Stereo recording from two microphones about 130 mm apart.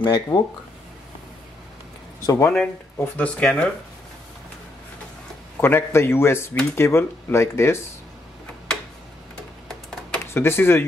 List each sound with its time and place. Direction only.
0.3 s speech: 35° left (ahead or behind)
2.2 s speech: 20° left (ahead or behind)
2.5 s speech: 10° left (ahead or behind)
5.6 s speech: 15° left (ahead or behind)
9.7 s a sound: 5° left (ahead or behind)
10.3 s speech: 20° left (ahead or behind)